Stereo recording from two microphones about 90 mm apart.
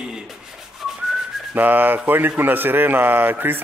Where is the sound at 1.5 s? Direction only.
20° right (ahead or behind).